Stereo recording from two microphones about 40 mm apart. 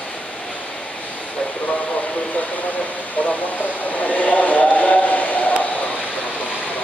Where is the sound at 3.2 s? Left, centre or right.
Left.